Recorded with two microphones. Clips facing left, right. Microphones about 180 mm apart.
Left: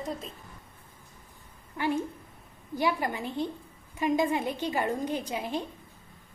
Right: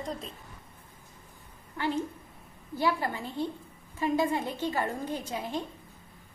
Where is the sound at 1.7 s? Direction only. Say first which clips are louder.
Left 1 dB; 15° left (ahead or behind).